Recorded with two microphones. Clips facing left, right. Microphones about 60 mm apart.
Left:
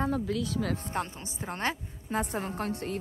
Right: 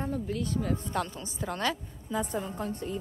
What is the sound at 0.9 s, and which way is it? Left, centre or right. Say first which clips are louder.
Speech: right 1 dB; left.